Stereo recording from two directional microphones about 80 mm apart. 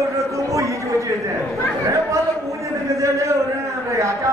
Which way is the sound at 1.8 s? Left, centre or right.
Right.